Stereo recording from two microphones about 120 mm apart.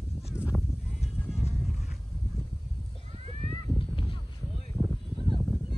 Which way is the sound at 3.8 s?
45° left (ahead or behind).